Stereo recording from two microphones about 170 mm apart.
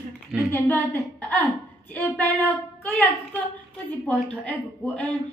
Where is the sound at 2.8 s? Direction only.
10° left (ahead or behind).